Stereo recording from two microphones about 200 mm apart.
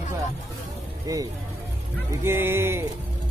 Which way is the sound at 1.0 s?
20° right (ahead or behind).